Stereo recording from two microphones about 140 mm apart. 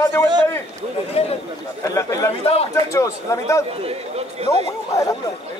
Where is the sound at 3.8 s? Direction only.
45° right (ahead or behind).